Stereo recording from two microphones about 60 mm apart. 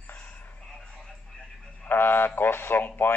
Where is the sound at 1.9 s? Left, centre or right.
Left.